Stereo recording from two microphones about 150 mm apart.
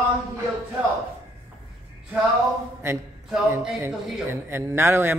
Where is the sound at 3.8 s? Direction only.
15° right (ahead or behind).